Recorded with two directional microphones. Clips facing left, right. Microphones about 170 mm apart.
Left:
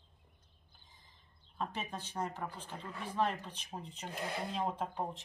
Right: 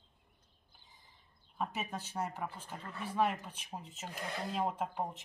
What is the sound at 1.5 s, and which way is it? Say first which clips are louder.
Speech: right 1 dB; 10° right (ahead or behind).